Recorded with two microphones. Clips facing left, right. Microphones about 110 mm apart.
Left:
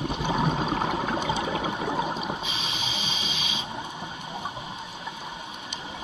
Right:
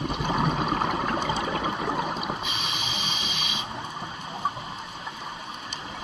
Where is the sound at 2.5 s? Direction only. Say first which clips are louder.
Right 1 dB; 55° right (ahead or behind).